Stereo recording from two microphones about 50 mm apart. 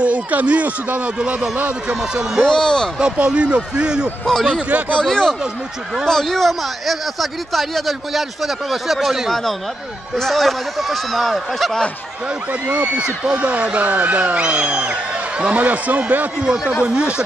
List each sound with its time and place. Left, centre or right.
0.0 s speech: right
2.4 s speech: centre
3.0 s speech: centre
4.3 s speech: centre
4.6 s speech: right
5.0 s speech: centre
9.3 s speech: centre
12.9 s speech: right
16.4 s speech: centre